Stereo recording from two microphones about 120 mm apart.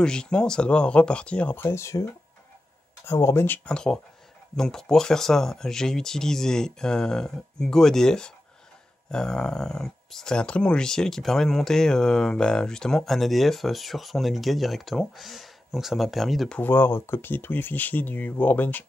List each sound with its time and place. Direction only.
0.0 s speech: 5° left (ahead or behind); by 2.0 s 25° left (ahead or behind)
3.1 s speech: 20° left (ahead or behind); by 16.5 s centre (ahead or behind)
16.5 s speech: 15° left (ahead or behind)